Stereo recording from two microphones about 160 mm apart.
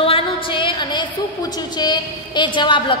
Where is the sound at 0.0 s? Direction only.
35° left (ahead or behind).